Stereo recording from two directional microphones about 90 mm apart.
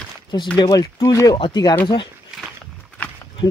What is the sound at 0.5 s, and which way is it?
Speech, 50° left (ahead or behind).